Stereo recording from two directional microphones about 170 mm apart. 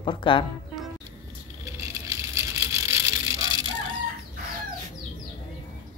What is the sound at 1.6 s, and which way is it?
Vehicle, 15° right (ahead or behind).